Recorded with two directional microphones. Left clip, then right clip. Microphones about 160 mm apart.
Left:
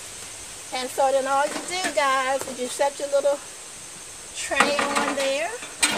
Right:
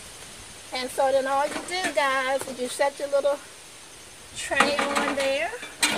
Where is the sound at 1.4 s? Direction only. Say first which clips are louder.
Left 2 dB; 5° right (ahead or behind).